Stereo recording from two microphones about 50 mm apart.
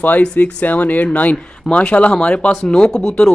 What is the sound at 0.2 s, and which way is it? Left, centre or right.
Speech, left.